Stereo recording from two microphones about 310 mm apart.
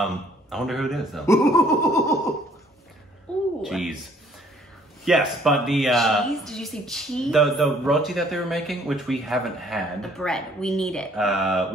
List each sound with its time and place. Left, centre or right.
0.0 s speech: centre
3.6 s speech: centre
5.0 s speech: centre